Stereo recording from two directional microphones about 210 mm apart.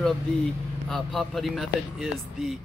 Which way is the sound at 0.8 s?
Centre (ahead or behind).